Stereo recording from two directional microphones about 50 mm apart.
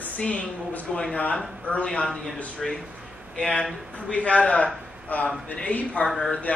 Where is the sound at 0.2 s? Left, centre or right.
Left.